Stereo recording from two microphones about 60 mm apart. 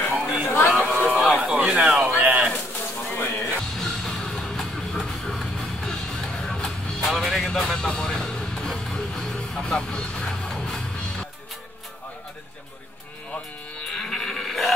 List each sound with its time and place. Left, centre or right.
0.0 s a sound: left
1.1 s a sound: centre
2.1 s pigeon: right
3.1 s music: left
3.7 s music: centre
13.9 s livestock: centre